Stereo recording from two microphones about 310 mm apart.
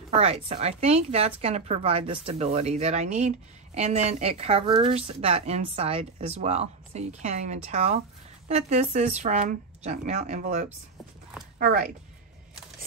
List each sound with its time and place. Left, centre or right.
0.2 s a woman's voice: centre